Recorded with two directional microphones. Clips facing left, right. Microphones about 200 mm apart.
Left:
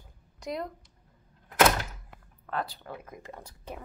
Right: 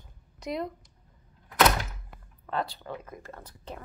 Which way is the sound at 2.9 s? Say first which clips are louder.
Right 2 dB; 10° left (ahead or behind).